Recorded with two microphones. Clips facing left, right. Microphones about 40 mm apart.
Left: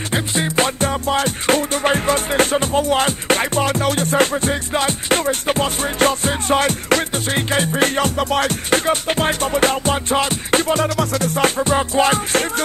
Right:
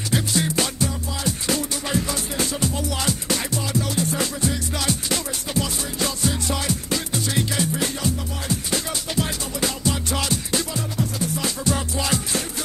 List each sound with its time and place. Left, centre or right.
0.1 s music: left
10.7 s music: left